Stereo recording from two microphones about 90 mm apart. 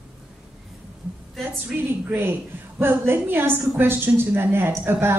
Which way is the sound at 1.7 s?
20° right (ahead or behind).